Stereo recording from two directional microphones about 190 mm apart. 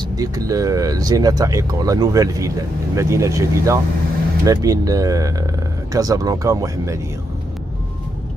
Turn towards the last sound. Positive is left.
turn(degrees=-15)  # may be behind; listen again after turning